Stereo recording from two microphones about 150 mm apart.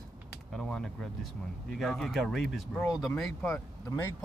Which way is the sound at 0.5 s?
5° left (ahead or behind).